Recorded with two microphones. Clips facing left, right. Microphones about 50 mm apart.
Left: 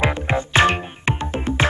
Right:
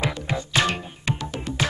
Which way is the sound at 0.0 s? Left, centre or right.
Left.